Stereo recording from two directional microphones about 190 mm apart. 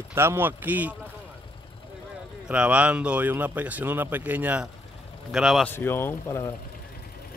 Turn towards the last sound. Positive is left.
turn(degrees=15)  # may be behind; listen again after turning